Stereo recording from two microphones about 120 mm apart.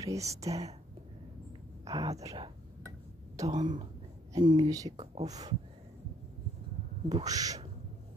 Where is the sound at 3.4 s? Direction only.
30° right (ahead or behind).